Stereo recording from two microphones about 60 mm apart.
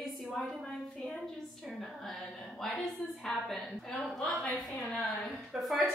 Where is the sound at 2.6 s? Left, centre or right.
Centre.